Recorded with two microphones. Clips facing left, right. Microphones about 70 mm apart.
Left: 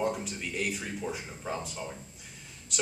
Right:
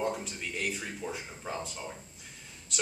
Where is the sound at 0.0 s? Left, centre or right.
Centre.